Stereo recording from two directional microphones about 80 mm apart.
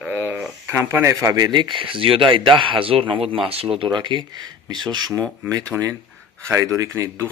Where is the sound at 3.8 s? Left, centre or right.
Right.